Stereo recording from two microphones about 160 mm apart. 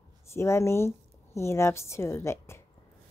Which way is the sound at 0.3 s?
15° left (ahead or behind).